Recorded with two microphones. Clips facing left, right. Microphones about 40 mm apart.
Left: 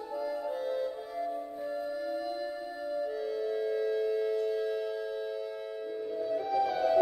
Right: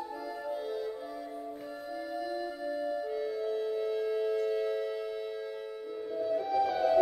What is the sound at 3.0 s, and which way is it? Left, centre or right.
Music, centre.